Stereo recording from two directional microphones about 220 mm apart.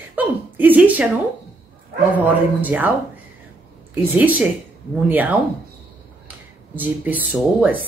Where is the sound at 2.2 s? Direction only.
5° right (ahead or behind).